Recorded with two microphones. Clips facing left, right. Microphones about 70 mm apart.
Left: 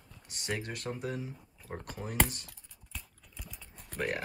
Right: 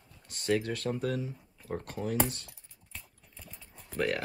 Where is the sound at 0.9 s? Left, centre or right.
Centre.